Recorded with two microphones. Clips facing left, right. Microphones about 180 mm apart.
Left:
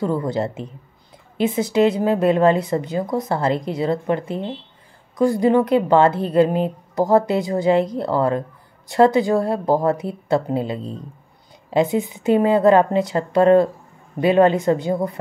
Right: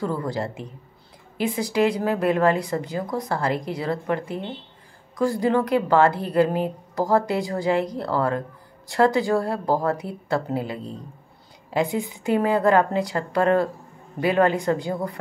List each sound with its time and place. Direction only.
0.0 s a woman's voice: 20° left (ahead or behind)